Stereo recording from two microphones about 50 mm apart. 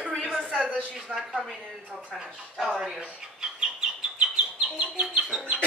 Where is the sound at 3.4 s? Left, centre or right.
Centre.